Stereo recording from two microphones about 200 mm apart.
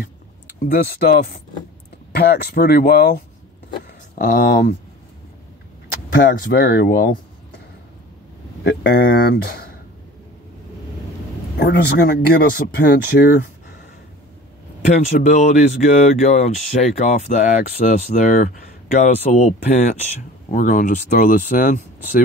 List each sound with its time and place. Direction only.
0.6 s speech: 45° left (ahead or behind)
6.1 s speech: 45° left (ahead or behind)
8.6 s speech: 55° left (ahead or behind)
11.5 s speech: 50° left (ahead or behind)
14.9 s speech: 35° left (ahead or behind)